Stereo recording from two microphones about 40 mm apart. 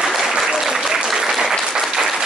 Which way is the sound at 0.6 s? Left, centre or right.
Centre.